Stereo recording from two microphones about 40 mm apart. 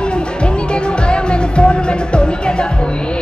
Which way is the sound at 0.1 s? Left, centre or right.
Left.